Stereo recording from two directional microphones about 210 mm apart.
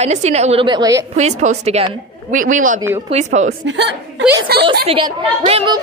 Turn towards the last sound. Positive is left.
turn(degrees=-25)  # may be behind; listen again after turning